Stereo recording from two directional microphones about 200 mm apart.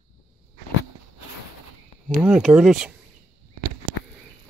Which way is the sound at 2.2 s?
5° right (ahead or behind).